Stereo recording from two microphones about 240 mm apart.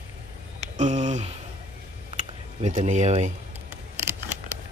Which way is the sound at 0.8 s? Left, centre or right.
Right.